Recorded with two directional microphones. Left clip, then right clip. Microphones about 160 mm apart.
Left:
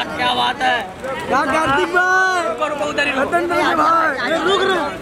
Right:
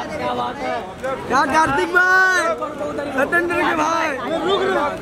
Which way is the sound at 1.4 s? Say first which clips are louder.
Right 1 dB; 5° right (ahead or behind).